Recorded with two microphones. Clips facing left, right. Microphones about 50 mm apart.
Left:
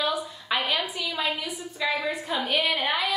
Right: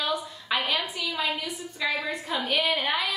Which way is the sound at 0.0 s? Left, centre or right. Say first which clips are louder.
Left 2 dB; centre.